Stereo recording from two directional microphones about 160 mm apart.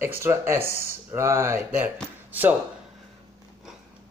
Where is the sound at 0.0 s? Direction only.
15° right (ahead or behind).